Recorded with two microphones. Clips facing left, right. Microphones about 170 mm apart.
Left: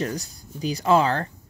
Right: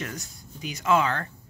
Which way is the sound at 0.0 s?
35° left (ahead or behind).